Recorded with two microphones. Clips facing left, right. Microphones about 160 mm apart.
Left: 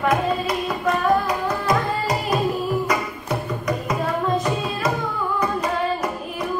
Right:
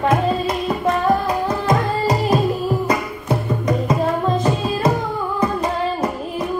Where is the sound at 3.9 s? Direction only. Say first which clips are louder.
Right 2 dB; 30° right (ahead or behind).